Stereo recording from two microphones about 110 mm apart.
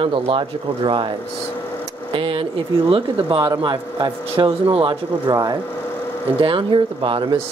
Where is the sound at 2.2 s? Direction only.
50° right (ahead or behind).